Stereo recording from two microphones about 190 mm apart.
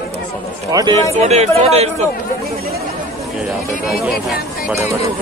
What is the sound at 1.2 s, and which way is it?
Speech, 35° right (ahead or behind).